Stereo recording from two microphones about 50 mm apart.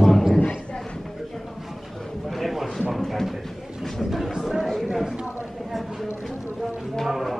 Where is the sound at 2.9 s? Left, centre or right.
Centre.